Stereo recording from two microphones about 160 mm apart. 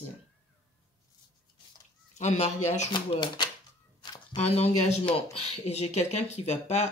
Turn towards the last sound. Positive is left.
turn(degrees=40)  # may be behind; listen again after turning